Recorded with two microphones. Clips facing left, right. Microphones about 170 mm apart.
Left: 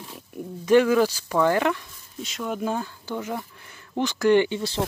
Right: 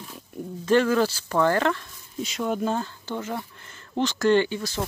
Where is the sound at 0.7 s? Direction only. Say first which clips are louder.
Left 3 dB; 10° left (ahead or behind).